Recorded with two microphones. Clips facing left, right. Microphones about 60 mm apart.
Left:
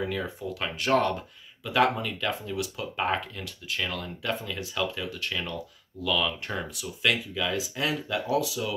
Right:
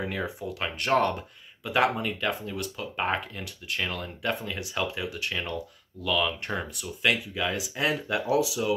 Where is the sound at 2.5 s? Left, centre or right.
Centre.